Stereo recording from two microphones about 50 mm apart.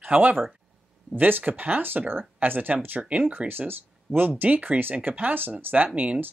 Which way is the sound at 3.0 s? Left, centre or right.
Right.